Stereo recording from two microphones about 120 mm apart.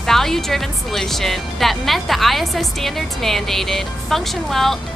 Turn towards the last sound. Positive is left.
turn(degrees=0)  # may be behind; listen again after turning